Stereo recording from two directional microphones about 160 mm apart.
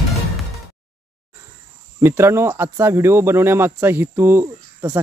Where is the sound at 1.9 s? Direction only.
15° right (ahead or behind).